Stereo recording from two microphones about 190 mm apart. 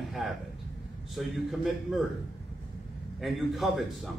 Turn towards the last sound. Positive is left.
turn(degrees=0)  # may be behind; listen again after turning